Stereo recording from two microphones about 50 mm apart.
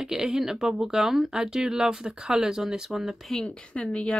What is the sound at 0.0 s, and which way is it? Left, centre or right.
Speech, centre.